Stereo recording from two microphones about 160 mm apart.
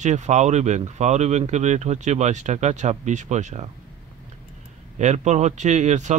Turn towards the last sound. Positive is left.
turn(degrees=-45)  # may be behind; listen again after turning